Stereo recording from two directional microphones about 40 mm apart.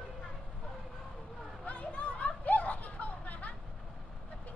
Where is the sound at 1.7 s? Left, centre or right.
Left.